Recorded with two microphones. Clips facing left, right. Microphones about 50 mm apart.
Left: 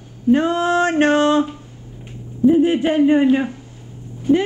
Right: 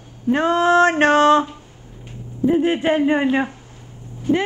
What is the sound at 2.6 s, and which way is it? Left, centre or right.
Speech, right.